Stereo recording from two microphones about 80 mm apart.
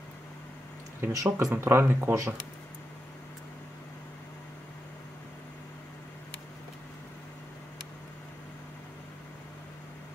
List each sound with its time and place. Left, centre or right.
1.1 s speech: right
1.5 s speech: right